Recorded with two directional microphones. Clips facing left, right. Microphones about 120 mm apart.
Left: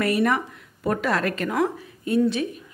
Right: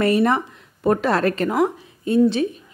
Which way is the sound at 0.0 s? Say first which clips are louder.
Right 4 dB; 30° right (ahead or behind).